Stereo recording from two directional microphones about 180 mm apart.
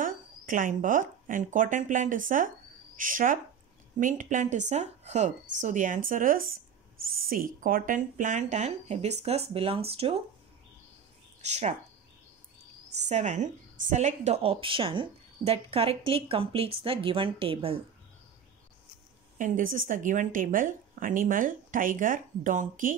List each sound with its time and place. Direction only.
0.0 s a woman's voice: 45° right (ahead or behind)
11.4 s a woman's voice: 40° right (ahead or behind)
13.1 s a woman's voice: 40° right (ahead or behind)
19.3 s speech: 45° right (ahead or behind)